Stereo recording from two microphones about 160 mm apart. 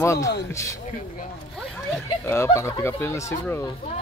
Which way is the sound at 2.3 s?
15° left (ahead or behind).